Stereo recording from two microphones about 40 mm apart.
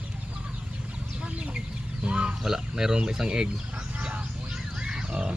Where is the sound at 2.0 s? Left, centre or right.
Right.